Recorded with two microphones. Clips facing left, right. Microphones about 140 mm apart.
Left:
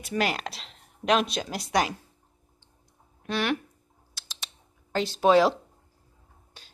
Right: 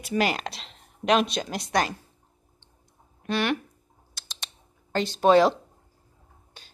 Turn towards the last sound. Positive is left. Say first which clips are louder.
# right 2 dB
turn(degrees=0)  # may be behind; listen again after turning